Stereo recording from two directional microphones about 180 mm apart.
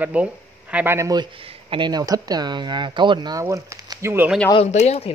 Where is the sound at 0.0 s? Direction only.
5° right (ahead or behind).